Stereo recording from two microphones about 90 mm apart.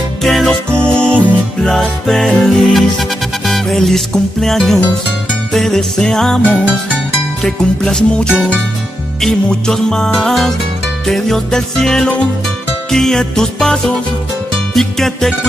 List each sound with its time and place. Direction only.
0.2 s music: centre (ahead or behind)
7.4 s music: 5° left (ahead or behind)